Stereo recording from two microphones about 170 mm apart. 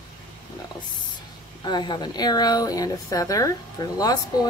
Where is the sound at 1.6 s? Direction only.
25° left (ahead or behind).